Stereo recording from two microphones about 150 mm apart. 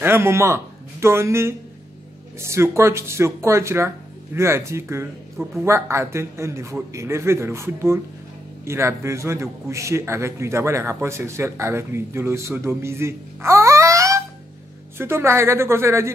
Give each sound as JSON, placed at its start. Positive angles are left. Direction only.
{"t": 0.0, "sound": "a man's voice", "side_deg": -15}